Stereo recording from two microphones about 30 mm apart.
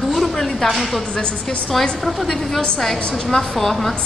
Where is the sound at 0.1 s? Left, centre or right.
Centre.